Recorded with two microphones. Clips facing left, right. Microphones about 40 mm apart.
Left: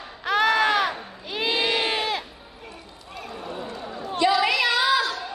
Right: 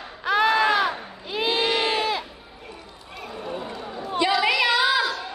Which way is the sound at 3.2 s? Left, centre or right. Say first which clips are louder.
Right 2 dB; centre.